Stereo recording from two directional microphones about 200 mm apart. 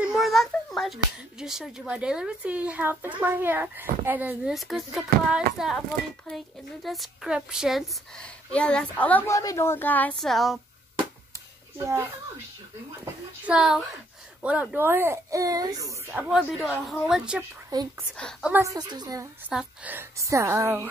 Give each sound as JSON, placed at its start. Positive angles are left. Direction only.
{"t": 0.0, "sound": "a child's voice", "side_deg": 0}
{"t": 13.5, "sound": "speech", "side_deg": -5}
{"t": 17.6, "sound": "speech", "side_deg": -20}
{"t": 18.1, "sound": "speech", "side_deg": 5}
{"t": 18.5, "sound": "speech", "side_deg": -15}
{"t": 19.5, "sound": "speech", "side_deg": -10}